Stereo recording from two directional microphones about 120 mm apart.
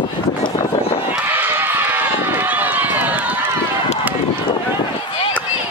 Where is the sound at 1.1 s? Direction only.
15° right (ahead or behind).